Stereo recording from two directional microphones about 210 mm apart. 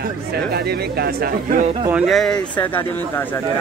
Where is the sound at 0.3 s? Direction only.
50° right (ahead or behind); by 1.9 s 35° right (ahead or behind).